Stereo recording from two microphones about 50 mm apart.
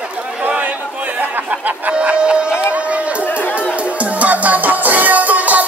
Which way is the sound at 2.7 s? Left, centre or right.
Right.